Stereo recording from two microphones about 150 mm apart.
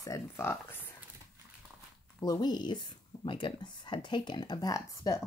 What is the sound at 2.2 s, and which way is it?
Speech, 30° left (ahead or behind).